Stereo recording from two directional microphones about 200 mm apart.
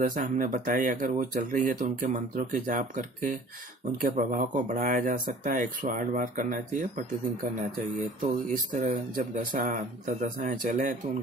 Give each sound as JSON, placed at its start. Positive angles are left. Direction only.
{"t": 0.0, "sound": "speech", "side_deg": -45}
{"t": 8.2, "sound": "speech", "side_deg": -40}